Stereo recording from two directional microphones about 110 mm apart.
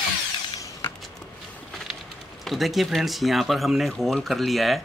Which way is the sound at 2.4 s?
Centre (ahead or behind).